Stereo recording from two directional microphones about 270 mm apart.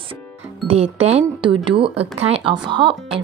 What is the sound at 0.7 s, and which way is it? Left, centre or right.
A woman's voice, right.